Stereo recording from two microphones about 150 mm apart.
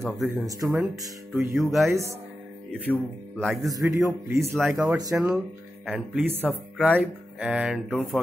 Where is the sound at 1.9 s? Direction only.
20° right (ahead or behind).